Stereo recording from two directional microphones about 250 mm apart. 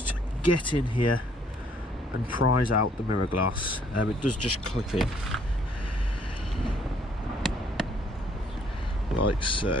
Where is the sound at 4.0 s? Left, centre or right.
Left.